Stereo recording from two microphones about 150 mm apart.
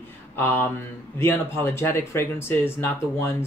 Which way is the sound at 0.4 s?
15° left (ahead or behind).